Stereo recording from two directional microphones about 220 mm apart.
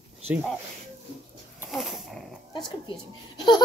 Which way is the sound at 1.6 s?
Centre (ahead or behind).